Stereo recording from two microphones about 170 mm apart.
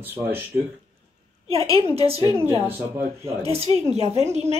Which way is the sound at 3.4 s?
35° right (ahead or behind).